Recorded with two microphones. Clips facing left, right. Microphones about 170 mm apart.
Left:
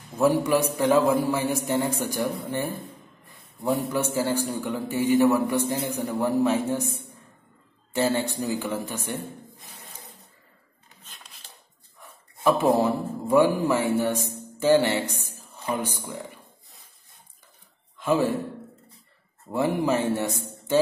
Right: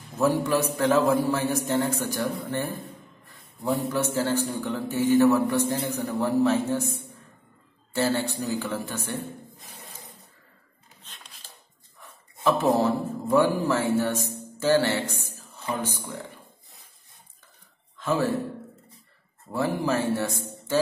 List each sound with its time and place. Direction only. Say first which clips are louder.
0.2 s a man's voice: left 2 dB; 15° left (ahead or behind)
7.9 s a man's voice: left 1 dB; 15° left (ahead or behind)
12.0 s a man's voice: left 2 dB; 15° left (ahead or behind)
14.6 s a sound: left 2 dB; 15° left (ahead or behind)
17.9 s a man's voice: left 2 dB; 15° left (ahead or behind)
19.5 s a man's voice: left 2 dB; 20° left (ahead or behind)